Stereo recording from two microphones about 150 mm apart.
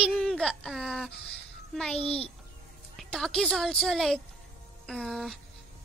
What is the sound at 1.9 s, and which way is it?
Speech, 40° left (ahead or behind).